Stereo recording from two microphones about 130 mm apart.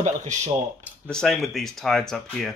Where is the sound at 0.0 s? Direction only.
65° right (ahead or behind).